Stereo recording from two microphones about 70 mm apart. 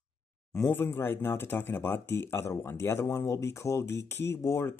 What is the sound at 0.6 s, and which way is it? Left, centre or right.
Speech, left.